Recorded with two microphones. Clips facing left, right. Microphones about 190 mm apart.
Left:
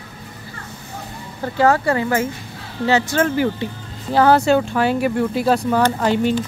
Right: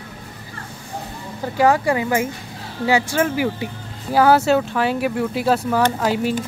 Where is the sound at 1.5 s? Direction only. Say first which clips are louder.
Even; 15° right (ahead or behind).